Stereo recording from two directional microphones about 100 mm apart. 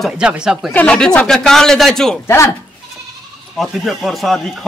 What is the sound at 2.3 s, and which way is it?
Speech, 25° left (ahead or behind).